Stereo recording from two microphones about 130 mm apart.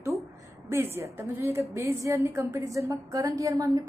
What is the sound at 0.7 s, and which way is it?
A woman's voice, 20° right (ahead or behind).